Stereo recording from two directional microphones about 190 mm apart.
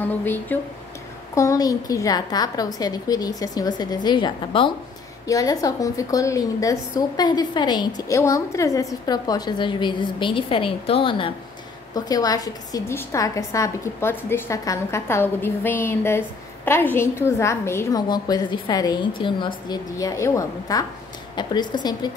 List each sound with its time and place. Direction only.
0.0 s a woman's voice: 10° left (ahead or behind)